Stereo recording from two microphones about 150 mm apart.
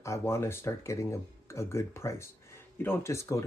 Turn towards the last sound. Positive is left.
turn(degrees=20)  # may be behind; listen again after turning